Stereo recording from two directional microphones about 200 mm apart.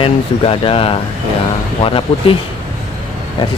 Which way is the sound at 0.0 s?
25° left (ahead or behind).